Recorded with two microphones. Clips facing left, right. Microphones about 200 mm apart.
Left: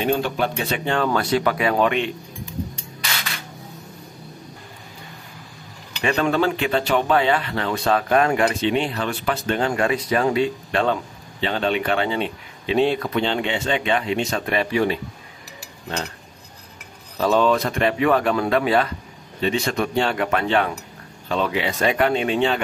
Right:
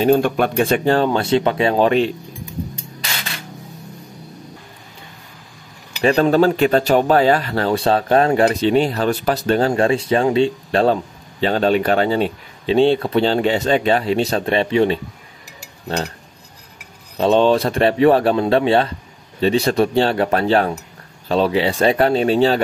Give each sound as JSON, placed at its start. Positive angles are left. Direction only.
{"t": 0.0, "sound": "speech", "side_deg": -45}
{"t": 6.0, "sound": "speech", "side_deg": -35}
{"t": 17.2, "sound": "speech", "side_deg": -30}